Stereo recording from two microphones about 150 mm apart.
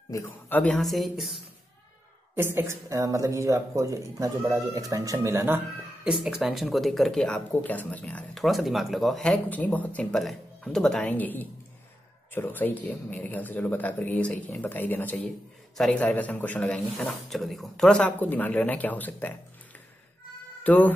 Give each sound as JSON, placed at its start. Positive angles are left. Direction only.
{"t": 0.1, "sound": "speech", "side_deg": 15}
{"t": 2.3, "sound": "speech", "side_deg": -15}
{"t": 6.2, "sound": "speech", "side_deg": 0}
{"t": 8.5, "sound": "a man's voice", "side_deg": 0}
{"t": 20.6, "sound": "speech", "side_deg": 10}